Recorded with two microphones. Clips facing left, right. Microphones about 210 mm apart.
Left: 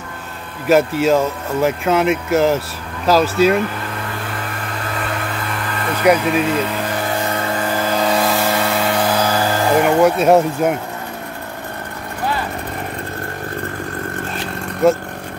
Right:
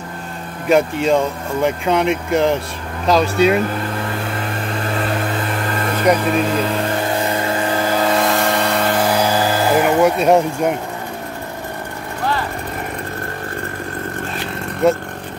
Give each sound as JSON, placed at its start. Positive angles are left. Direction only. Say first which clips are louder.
{"t": 0.7, "sound": "speech", "louder": "left 1 dB", "side_deg": 5}
{"t": 6.1, "sound": "speech", "louder": "left 2 dB", "side_deg": 10}
{"t": 7.9, "sound": "vehicle", "louder": "even", "side_deg": 0}
{"t": 14.8, "sound": "speech", "louder": "left 1 dB", "side_deg": 0}